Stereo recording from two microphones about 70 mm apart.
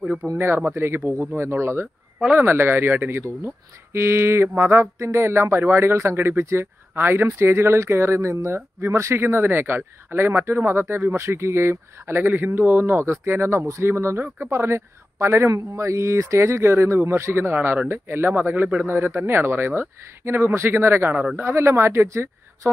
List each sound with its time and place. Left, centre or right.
0.0 s speech: centre
0.7 s speech: right
2.1 s speech: right
2.4 s speech: right